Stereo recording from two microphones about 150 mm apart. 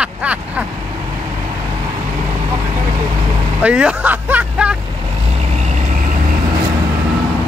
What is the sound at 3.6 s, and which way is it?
Speech, 10° right (ahead or behind).